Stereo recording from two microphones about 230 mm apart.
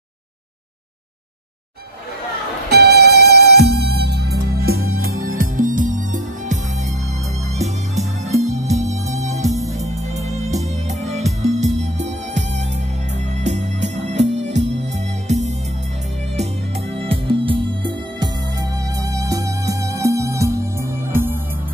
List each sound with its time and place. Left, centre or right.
2.7 s music: right
11.1 s music: right
14.2 s music: right
16.9 s music: right